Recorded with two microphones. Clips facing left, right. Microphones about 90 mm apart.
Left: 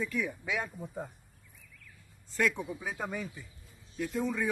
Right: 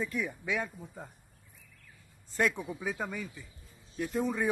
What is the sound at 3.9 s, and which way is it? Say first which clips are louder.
Speech: right 1 dB; 40° right (ahead or behind).